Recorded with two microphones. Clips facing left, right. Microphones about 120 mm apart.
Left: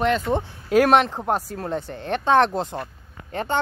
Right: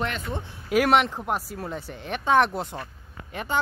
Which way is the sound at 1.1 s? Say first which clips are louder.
Left 5 dB; 35° left (ahead or behind).